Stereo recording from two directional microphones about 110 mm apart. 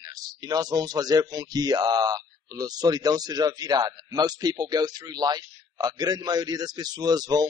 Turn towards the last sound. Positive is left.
turn(degrees=-35)  # may be behind; listen again after turning